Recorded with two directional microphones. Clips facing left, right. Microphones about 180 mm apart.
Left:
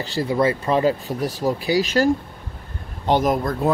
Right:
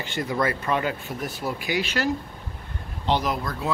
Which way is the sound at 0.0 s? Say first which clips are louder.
Left 6 dB; 35° left (ahead or behind).